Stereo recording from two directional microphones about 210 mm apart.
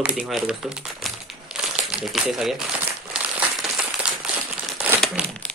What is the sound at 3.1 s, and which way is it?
Crumpling, 5° right (ahead or behind).